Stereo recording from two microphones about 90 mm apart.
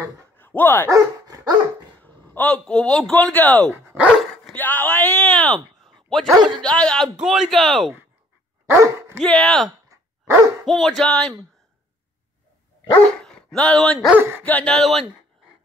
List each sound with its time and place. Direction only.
0.4 s speech: 20° left (ahead or behind)
0.8 s dog: 40° right (ahead or behind)
2.0 s a sound: 20° left (ahead or behind)
2.6 s speech: 10° left (ahead or behind)
3.7 s speech: 15° right (ahead or behind)
4.2 s dog: 10° left (ahead or behind)
4.6 s speech: 20° left (ahead or behind); by 7.9 s centre (ahead or behind)
8.6 s speech: 30° right (ahead or behind)
9.2 s speech: 5° left (ahead or behind)
9.7 s a sound: 35° right (ahead or behind)
10.6 s speech: 5° left (ahead or behind)
13.2 s speech: 5° left (ahead or behind)
14.4 s speech: 15° left (ahead or behind)
14.7 s speech: 5° left (ahead or behind)